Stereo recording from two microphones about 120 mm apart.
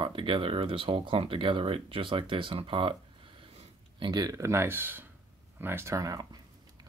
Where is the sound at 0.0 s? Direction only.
45° right (ahead or behind).